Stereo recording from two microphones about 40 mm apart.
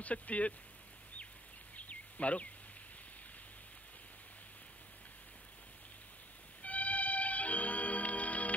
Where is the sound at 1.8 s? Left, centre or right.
Left.